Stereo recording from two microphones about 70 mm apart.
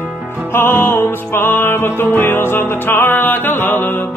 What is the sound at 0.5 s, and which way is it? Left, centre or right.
Music, left.